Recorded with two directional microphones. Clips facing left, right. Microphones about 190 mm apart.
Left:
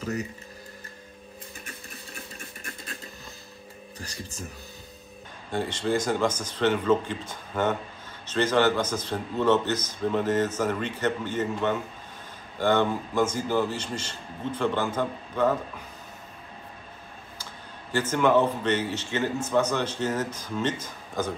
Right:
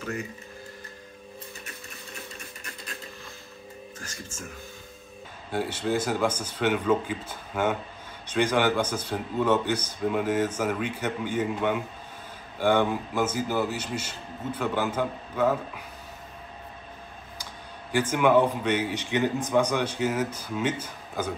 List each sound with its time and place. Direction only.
4.0 s speech: 35° left (ahead or behind)
5.5 s speech: 10° right (ahead or behind)
17.9 s speech: 10° right (ahead or behind)